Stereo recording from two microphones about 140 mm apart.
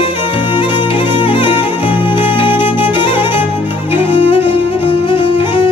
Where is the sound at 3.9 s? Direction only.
15° right (ahead or behind).